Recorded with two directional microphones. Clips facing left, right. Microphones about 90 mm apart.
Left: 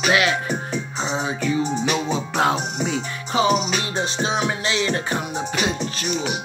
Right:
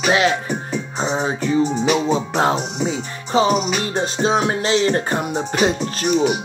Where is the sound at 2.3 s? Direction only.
30° right (ahead or behind).